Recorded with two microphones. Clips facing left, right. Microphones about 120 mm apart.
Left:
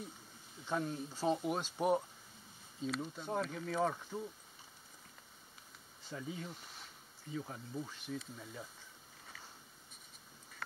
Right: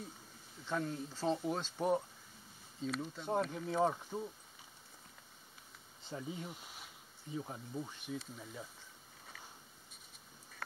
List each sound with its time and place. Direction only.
0.7 s speech: 20° left (ahead or behind)
3.3 s speech: 25° right (ahead or behind)
6.0 s speech: 25° right (ahead or behind)
7.7 s speech: 5° right (ahead or behind)